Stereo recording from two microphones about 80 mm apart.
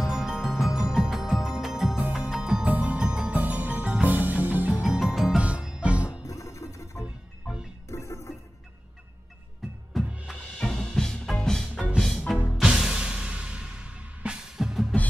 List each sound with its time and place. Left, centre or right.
0.0 s music: centre
2.7 s music: right
4.8 s music: centre
6.2 s music: left
7.0 s music: centre
7.9 s music: left
9.9 s music: centre